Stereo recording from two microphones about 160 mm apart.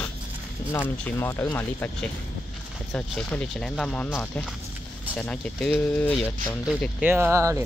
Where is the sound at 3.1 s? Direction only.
5° left (ahead or behind).